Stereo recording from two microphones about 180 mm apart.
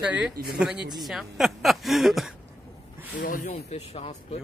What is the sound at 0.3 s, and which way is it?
Speech, 55° right (ahead or behind).